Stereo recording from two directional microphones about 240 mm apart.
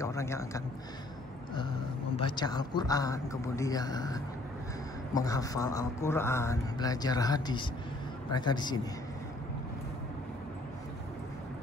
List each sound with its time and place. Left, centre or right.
0.0 s a man's voice: centre
2.1 s a man's voice: centre